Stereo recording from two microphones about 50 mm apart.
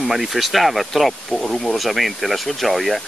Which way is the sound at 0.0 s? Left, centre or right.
Centre.